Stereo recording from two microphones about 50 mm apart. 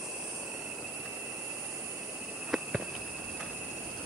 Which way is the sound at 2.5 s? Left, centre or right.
Centre.